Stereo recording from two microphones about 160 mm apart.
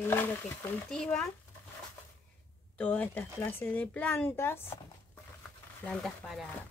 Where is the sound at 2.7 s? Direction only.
10° left (ahead or behind).